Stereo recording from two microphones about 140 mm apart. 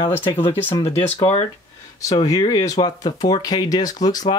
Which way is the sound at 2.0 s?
25° left (ahead or behind).